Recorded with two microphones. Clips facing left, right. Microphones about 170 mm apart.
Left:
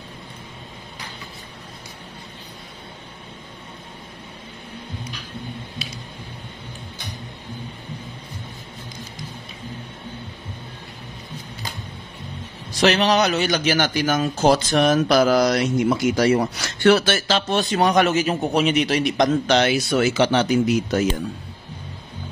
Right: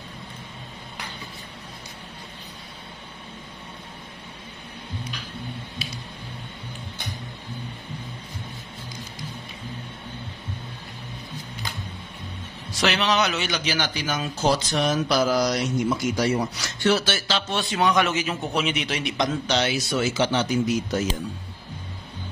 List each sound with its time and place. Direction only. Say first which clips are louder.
12.8 s speech: left 5 dB; 40° left (ahead or behind); by 21.1 s 65° left (ahead or behind)